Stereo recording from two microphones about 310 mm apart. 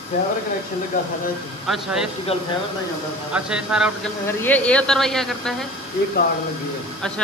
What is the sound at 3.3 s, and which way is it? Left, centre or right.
Speech, centre.